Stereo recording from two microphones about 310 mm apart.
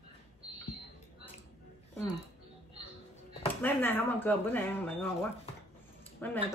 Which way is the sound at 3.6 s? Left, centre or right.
Centre.